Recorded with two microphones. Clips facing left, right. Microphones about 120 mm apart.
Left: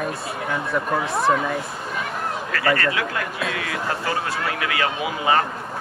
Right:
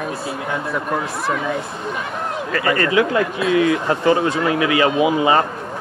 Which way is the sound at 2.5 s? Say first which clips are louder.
Right 5 dB; 20° right (ahead or behind).